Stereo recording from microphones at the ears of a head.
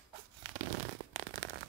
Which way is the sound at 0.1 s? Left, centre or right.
Right.